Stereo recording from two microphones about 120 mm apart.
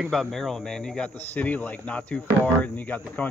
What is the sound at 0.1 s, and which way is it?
A man's voice, centre (ahead or behind).